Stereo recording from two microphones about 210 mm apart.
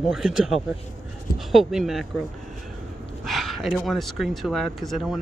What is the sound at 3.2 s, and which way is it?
Speech, centre (ahead or behind).